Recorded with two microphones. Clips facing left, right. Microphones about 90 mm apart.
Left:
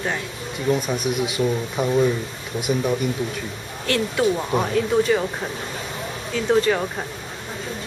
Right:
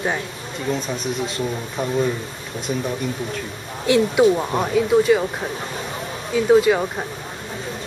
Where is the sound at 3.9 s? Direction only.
15° right (ahead or behind).